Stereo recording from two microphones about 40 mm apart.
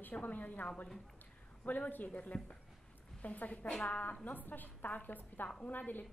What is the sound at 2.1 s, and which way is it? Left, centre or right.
A woman's voice, left.